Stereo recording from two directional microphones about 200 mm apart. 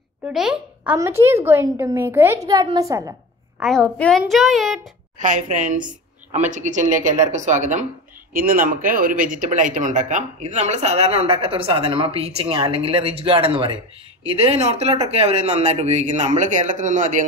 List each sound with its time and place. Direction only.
0.2 s a child's voice: 5° right (ahead or behind)
0.9 s a child's voice: 15° right (ahead or behind)
3.5 s a woman's voice: centre (ahead or behind)
5.2 s speech: 40° right (ahead or behind)